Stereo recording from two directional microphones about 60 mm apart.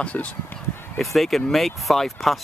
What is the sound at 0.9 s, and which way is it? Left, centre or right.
Speech, centre.